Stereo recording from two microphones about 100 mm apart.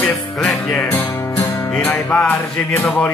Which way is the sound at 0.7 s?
20° left (ahead or behind).